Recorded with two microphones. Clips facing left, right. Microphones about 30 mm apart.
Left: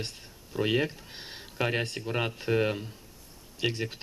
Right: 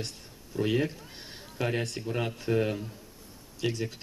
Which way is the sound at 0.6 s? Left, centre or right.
Left.